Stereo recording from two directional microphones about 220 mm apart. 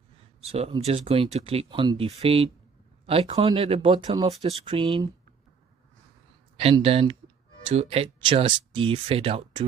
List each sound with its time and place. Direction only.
0.5 s speech: 25° right (ahead or behind)
6.5 s speech: 25° right (ahead or behind)